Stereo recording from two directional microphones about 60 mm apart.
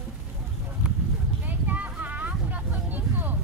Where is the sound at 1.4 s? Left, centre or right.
Right.